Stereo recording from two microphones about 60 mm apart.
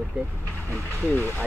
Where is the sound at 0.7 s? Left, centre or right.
Left.